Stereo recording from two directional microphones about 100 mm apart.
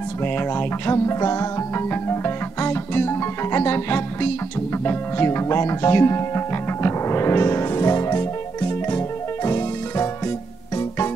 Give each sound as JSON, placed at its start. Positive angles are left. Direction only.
{"t": 0.2, "sound": "music", "side_deg": 20}